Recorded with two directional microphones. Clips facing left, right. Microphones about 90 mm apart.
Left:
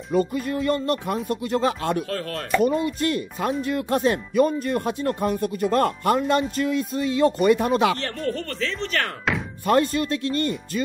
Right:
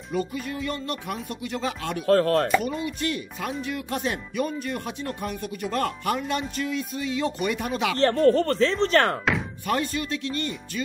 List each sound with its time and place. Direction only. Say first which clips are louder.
0.1 s speech: left 6 dB; 45° left (ahead or behind)
2.0 s speech: right 10 dB; 40° right (ahead or behind)
2.6 s speech: left 7 dB; 40° left (ahead or behind)
8.0 s speech: right 9 dB; 35° right (ahead or behind)
9.7 s speech: left 7 dB; 45° left (ahead or behind)